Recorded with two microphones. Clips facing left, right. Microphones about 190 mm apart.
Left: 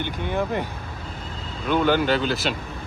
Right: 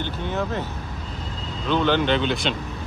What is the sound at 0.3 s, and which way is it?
Speech, 15° left (ahead or behind).